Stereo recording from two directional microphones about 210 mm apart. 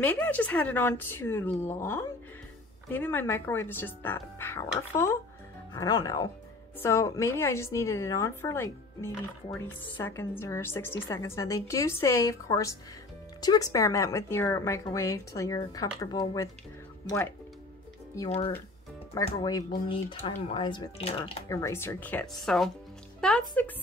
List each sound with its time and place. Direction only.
0.0 s speech: 10° left (ahead or behind)
19.2 s speech: 20° left (ahead or behind); by 23.4 s 5° left (ahead or behind)